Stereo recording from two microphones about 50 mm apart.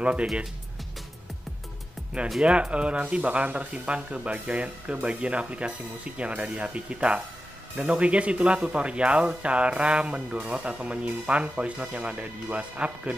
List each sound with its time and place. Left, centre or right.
0.0 s speech: right
2.4 s speech: right